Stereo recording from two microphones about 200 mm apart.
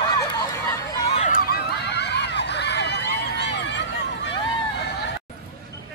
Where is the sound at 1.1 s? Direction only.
40° left (ahead or behind); by 4.3 s 60° left (ahead or behind).